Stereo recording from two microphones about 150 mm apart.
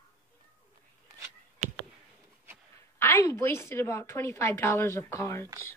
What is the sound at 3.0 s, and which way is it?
A woman's voice, 15° left (ahead or behind).